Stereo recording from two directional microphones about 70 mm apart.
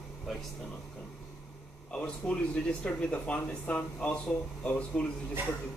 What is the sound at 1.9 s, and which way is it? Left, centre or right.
Speech, centre.